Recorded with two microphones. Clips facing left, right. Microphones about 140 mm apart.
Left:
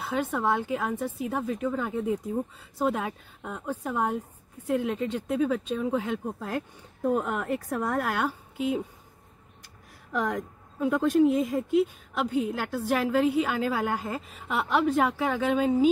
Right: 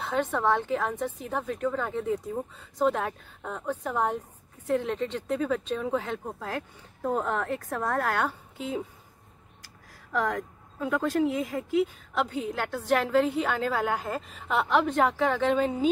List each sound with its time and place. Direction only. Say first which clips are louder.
0.0 s a woman's voice: right 1 dB; 10° left (ahead or behind)
10.1 s speech: even; 20° left (ahead or behind)
12.2 s a woman's voice: left 2 dB; 10° left (ahead or behind)